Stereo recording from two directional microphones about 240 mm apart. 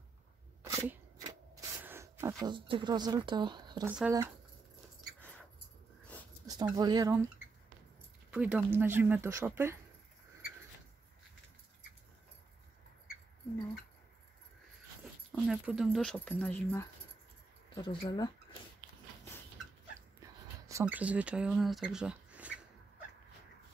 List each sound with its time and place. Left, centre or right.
0.7 s a sound: centre
2.4 s speech: centre
6.4 s speech: centre
8.3 s speech: centre
15.4 s speech: centre
17.8 s speech: centre
20.2 s speech: centre